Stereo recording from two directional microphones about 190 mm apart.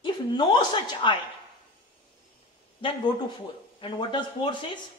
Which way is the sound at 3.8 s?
25° left (ahead or behind).